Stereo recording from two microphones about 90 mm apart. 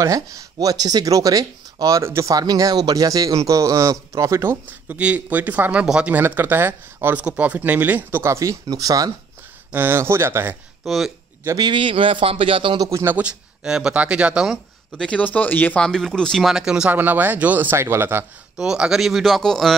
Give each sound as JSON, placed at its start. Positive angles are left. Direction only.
{"t": 0.0, "sound": "speech", "side_deg": -40}
{"t": 4.9, "sound": "speech", "side_deg": -15}
{"t": 9.7, "sound": "speech", "side_deg": -25}
{"t": 10.8, "sound": "speech", "side_deg": 0}
{"t": 11.5, "sound": "a man's voice", "side_deg": -60}
{"t": 12.7, "sound": "speech", "side_deg": -40}
{"t": 13.2, "sound": "speech", "side_deg": -10}
{"t": 15.0, "sound": "speech", "side_deg": 15}
{"t": 15.8, "sound": "speech", "side_deg": 5}
{"t": 16.5, "sound": "speech", "side_deg": -10}
{"t": 16.9, "sound": "speech", "side_deg": -20}
{"t": 18.6, "sound": "speech", "side_deg": -5}